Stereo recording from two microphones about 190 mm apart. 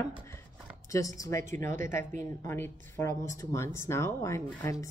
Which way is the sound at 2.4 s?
10° left (ahead or behind).